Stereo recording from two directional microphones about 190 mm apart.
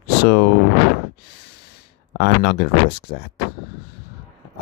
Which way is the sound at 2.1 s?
60° left (ahead or behind).